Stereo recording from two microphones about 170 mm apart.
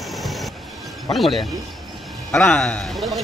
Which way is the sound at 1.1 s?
Centre (ahead or behind).